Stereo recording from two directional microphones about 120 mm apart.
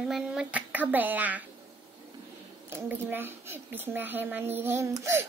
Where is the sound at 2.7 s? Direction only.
15° right (ahead or behind).